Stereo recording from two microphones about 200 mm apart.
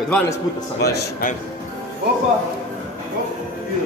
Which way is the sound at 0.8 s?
50° left (ahead or behind).